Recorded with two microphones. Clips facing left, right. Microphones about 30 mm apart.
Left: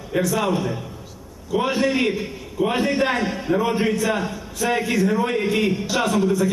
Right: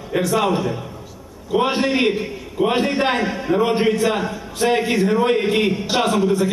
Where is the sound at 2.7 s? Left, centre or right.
Right.